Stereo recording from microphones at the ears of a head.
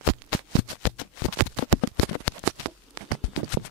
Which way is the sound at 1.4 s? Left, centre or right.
Left.